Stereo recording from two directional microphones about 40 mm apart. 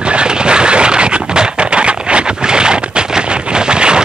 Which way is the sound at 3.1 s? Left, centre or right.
Right.